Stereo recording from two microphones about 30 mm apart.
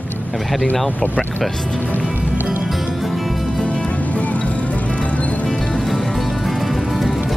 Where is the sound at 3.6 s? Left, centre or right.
Left.